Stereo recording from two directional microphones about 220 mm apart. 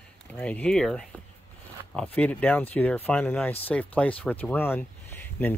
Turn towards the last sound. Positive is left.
turn(degrees=10)  # may be behind; listen again after turning